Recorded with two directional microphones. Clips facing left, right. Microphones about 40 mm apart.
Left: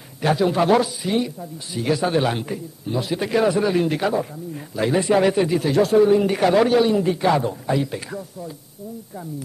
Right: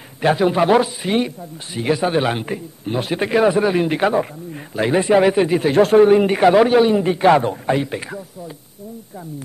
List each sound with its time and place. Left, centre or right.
0.2 s speech: right
0.9 s speech: right
1.8 s speech: right
2.5 s a man's voice: right
3.3 s speech: right
4.0 s a man's voice: right
4.7 s speech: right
6.2 s speech: right
7.2 s a man's voice: right
7.8 s speech: right